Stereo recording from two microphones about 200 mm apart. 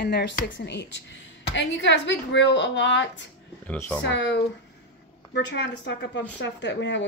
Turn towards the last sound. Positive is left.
turn(degrees=60)  # may be behind; listen again after turning